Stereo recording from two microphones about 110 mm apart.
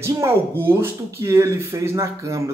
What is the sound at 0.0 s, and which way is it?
Speech, 25° right (ahead or behind).